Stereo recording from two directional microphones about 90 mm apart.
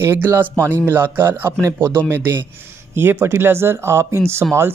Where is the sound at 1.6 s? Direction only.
35° right (ahead or behind).